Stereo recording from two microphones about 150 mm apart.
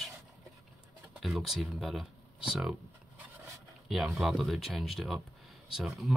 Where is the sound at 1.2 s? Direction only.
Centre (ahead or behind).